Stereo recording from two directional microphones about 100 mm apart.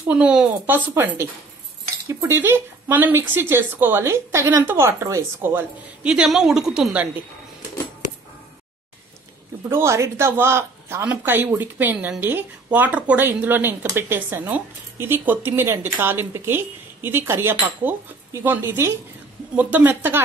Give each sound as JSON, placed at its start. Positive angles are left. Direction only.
{"t": 0.1, "sound": "a woman's voice", "side_deg": -10}
{"t": 0.7, "sound": "speech", "side_deg": -25}
{"t": 6.0, "sound": "a woman's voice", "side_deg": -5}
{"t": 9.7, "sound": "speech", "side_deg": -25}